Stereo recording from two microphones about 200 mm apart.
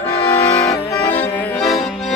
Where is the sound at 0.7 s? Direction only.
15° left (ahead or behind).